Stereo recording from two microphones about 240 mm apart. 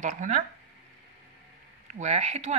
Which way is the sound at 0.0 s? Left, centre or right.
Right.